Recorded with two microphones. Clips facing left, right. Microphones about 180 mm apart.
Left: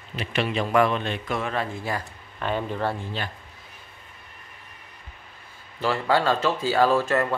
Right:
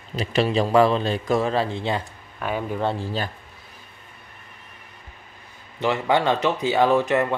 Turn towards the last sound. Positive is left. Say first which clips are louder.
# right 2 dB
turn(degrees=-20)  # may be behind; listen again after turning